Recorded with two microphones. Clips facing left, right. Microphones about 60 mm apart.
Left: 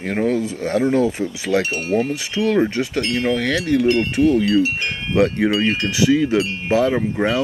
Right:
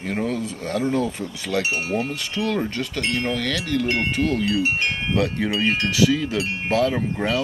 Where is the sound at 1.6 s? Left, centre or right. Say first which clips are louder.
Left 1 dB; right.